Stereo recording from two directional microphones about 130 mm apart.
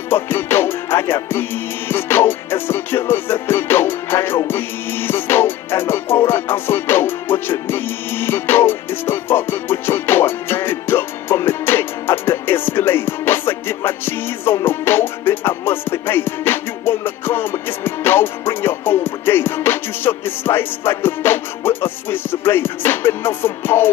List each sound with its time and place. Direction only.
0.1 s music: 15° left (ahead or behind)